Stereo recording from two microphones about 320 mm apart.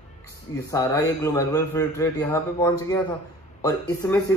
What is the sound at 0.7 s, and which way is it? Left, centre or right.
A man's voice, centre.